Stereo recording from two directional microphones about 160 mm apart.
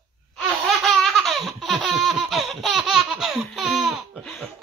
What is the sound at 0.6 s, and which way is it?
Laughter, centre (ahead or behind).